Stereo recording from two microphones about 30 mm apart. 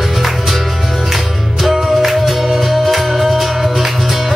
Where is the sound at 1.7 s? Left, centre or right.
Centre.